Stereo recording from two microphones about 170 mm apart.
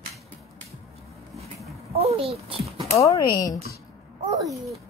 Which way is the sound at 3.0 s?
20° left (ahead or behind).